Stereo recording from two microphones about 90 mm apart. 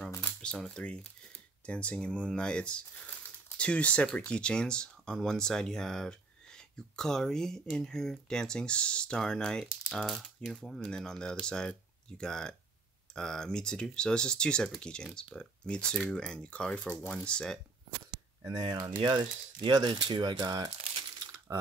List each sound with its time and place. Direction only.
0.4 s speech: 10° left (ahead or behind)
18.4 s speech: 50° right (ahead or behind)